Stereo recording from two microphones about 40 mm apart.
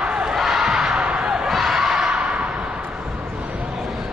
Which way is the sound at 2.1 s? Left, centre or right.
Right.